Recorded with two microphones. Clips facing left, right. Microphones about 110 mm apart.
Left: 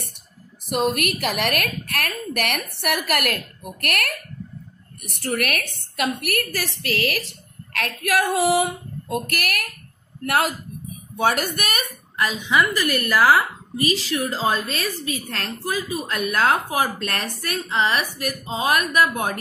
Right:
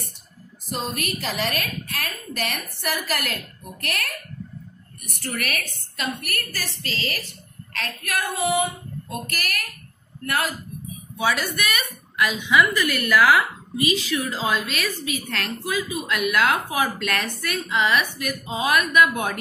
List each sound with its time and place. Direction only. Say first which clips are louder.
0.7 s a woman's voice: left 7 dB; 70° left (ahead or behind)
5.3 s a woman's voice: left 5 dB; 55° left (ahead or behind); by 8.6 s 80° left
9.3 s a woman's voice: left 4 dB; 60° left (ahead or behind)
10.2 s speech: left 4 dB; 70° left (ahead or behind)
11.1 s a woman's voice: left 3 dB; 50° left (ahead or behind)
12.2 s a woman's voice: right 1 dB; 35° left (ahead or behind)